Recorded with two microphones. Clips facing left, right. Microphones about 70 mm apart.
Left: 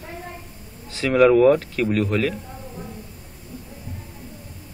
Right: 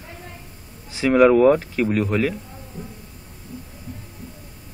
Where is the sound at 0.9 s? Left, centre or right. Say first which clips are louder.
Right 3 dB; centre.